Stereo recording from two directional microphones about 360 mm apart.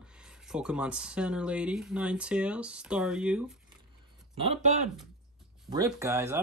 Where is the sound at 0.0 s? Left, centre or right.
Centre.